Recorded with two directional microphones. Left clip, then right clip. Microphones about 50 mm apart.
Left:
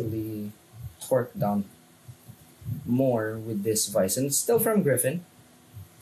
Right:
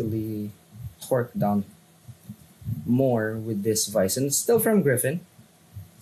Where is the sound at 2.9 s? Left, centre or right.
Left.